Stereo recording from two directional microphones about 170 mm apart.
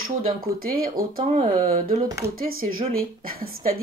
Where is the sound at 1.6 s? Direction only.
55° right (ahead or behind).